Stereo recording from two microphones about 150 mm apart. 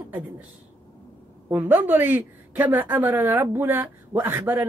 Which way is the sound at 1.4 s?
15° right (ahead or behind).